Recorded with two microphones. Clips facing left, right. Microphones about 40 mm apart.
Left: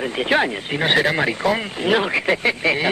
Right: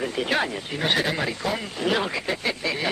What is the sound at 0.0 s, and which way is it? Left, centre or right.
Speech, left.